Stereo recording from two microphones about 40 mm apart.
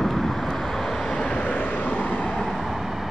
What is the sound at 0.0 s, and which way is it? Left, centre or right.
Vehicle, centre.